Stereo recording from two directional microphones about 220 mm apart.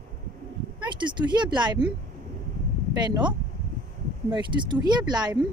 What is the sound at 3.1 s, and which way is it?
Speech, 20° right (ahead or behind).